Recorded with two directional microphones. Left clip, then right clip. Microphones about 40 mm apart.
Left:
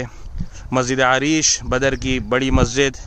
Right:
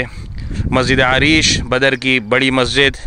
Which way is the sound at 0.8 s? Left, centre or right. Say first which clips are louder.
Right 3 dB; right.